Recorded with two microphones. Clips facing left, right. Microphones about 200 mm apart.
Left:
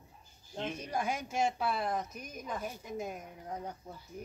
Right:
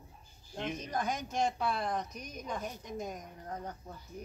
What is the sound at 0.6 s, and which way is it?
Speech, 10° left (ahead or behind).